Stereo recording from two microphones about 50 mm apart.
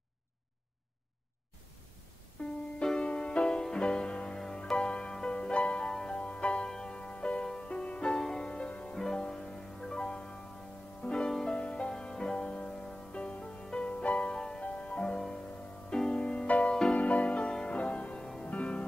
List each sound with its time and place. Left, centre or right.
2.4 s music: left
2.8 s music: centre